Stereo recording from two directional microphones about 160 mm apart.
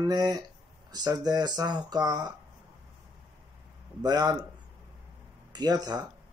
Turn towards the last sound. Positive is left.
turn(degrees=-25)  # may be behind; listen again after turning